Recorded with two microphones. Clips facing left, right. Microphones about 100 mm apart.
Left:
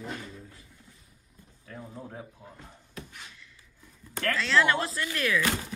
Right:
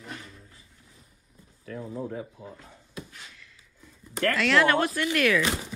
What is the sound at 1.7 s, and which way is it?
Speech, 90° right.